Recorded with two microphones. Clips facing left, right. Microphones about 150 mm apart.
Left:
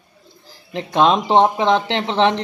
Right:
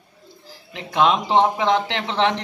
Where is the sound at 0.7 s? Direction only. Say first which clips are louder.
Left 3 dB; 35° left (ahead or behind).